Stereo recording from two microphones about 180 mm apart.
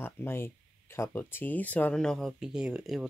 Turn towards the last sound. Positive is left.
turn(degrees=-5)  # may be behind; listen again after turning